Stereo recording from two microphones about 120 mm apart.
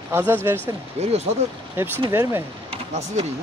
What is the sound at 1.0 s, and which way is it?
Speech, 65° right (ahead or behind).